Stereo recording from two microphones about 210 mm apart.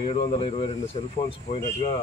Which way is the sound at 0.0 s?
25° left (ahead or behind).